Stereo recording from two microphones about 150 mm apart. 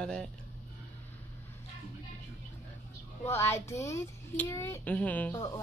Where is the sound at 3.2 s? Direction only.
15° left (ahead or behind).